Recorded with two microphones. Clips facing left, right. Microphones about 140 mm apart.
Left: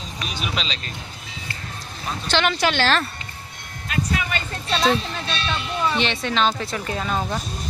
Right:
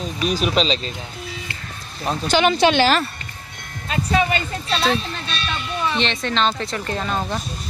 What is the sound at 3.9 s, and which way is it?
Speech, 30° right (ahead or behind).